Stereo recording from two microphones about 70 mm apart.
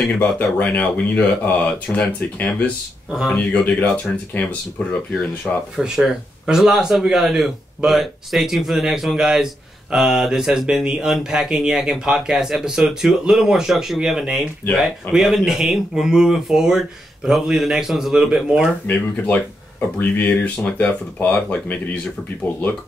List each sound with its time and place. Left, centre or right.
0.2 s speech: left
3.1 s speech: centre
3.3 s speech: left
5.5 s speech: centre
5.8 s speech: centre
18.9 s speech: left